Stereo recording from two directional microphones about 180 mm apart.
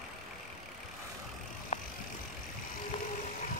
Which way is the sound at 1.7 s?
35° left (ahead or behind).